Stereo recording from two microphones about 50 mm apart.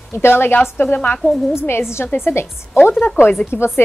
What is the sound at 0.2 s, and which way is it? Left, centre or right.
Speech, left.